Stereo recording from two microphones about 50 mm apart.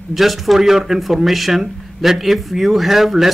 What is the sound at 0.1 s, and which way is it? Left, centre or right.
Speech, centre.